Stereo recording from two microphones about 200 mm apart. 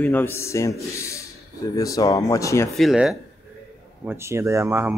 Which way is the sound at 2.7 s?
Centre (ahead or behind).